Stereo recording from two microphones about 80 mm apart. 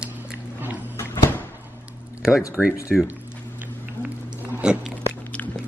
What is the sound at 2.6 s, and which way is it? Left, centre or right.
Speech, centre.